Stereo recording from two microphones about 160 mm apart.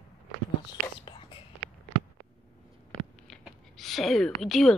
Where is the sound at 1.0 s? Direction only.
30° left (ahead or behind).